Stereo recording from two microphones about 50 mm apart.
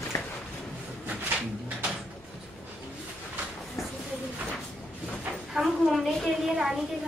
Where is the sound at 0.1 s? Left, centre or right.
Left.